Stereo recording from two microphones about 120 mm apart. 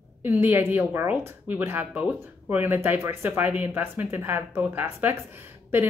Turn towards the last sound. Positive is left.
turn(degrees=-20)  # may be behind; listen again after turning